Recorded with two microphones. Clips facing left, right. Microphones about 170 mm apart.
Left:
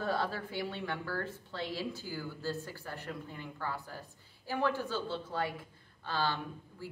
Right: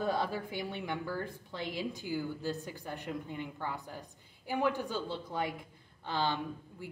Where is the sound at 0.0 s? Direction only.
15° right (ahead or behind).